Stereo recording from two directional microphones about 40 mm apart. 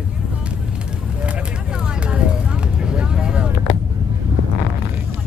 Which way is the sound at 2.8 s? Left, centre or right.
Right.